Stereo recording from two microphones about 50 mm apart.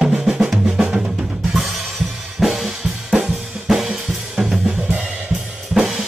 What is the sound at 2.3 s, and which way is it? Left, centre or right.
Drum kit, centre.